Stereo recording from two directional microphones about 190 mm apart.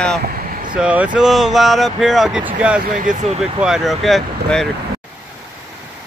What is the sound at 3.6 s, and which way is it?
Speech, centre (ahead or behind).